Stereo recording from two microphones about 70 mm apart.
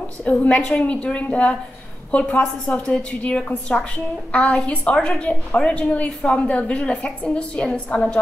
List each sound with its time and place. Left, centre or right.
0.2 s a woman's voice: centre